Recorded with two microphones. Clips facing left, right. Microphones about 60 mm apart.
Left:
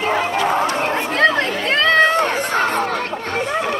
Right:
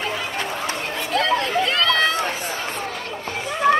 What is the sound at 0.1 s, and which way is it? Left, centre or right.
Run, left.